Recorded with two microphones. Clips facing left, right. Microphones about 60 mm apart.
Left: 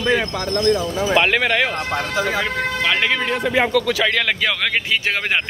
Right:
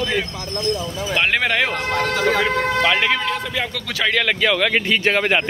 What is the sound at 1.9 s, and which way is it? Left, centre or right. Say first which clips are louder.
Speech: right 5 dB; centre.